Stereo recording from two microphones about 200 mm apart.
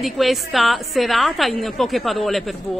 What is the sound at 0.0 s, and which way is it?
A woman's voice, centre (ahead or behind).